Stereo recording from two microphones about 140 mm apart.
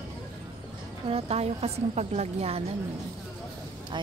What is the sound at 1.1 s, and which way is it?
A woman's voice, 45° right (ahead or behind).